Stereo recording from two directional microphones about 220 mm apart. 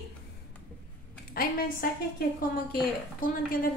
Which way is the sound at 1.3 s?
40° left (ahead or behind).